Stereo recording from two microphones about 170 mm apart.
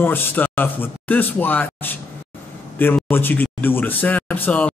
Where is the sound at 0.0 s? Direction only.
10° left (ahead or behind).